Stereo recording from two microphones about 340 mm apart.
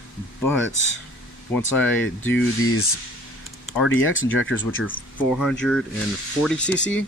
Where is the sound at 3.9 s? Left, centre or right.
Left.